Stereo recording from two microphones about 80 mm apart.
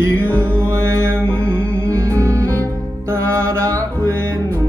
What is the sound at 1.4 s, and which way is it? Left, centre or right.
Music, centre.